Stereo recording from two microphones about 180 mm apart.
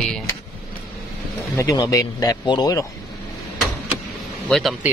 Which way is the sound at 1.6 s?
20° left (ahead or behind).